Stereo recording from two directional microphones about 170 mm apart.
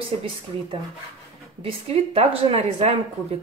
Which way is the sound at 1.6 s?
35° right (ahead or behind).